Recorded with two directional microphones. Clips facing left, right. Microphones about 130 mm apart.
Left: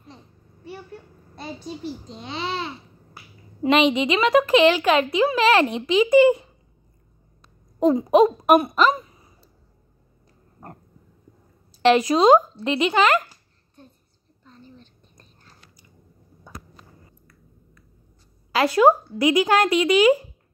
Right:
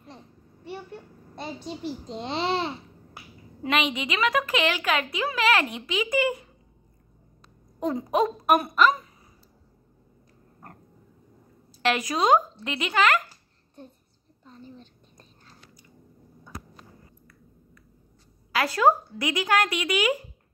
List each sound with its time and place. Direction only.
1.6 s a child's voice: 90° right
2.1 s a child's voice: 25° right (ahead or behind)
3.6 s a woman's voice: 25° left (ahead or behind)
7.8 s a woman's voice: 20° left (ahead or behind)
11.8 s a woman's voice: 25° left (ahead or behind)
14.4 s a sound: 5° right (ahead or behind)
18.5 s a woman's voice: 20° left (ahead or behind)